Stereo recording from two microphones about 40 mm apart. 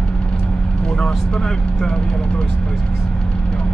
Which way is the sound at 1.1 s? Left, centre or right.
Centre.